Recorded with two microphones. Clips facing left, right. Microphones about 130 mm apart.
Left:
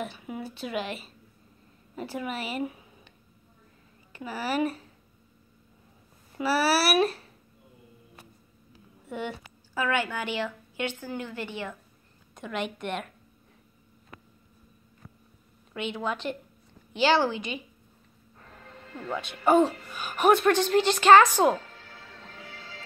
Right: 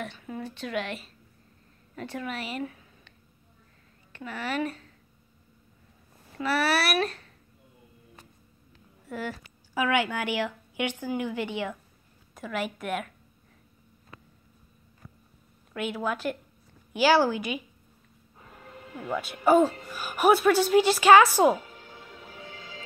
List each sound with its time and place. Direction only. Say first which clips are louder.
0.2 s a woman's voice: even; 10° left (ahead or behind)
2.6 s speech: left 3 dB; 15° left (ahead or behind)
4.1 s a woman's voice: left 2 dB; 5° left (ahead or behind)
6.4 s a woman's voice: left 2 dB; 5° left (ahead or behind)
8.7 s a sound: left 1 dB; centre (ahead or behind)
9.8 s a woman's voice: right 2 dB; 15° right (ahead or behind)
12.4 s a woman's voice: right 1 dB; 5° right (ahead or behind)
15.7 s a woman's voice: right 1 dB; 5° right (ahead or behind)
18.4 s music: right 2 dB; 10° right (ahead or behind)
19.4 s a woman's voice: right 1 dB; centre (ahead or behind)